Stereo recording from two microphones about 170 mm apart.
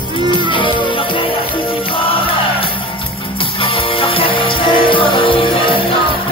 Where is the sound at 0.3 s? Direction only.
30° left (ahead or behind).